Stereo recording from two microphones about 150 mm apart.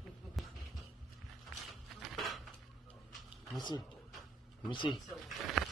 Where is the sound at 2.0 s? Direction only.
Centre (ahead or behind).